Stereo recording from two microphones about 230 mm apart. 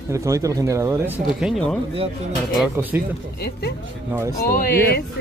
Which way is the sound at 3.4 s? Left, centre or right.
Left.